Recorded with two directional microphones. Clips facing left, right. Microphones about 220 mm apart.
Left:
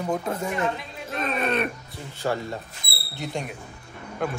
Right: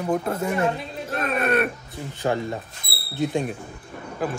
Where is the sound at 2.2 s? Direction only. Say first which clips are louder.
Right 3 dB; 20° right (ahead or behind).